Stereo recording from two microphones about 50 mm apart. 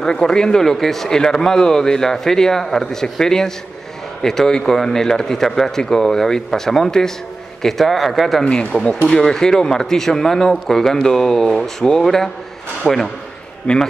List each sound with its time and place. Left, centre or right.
0.0 s speech: centre
8.8 s speech: centre
13.7 s a man's voice: left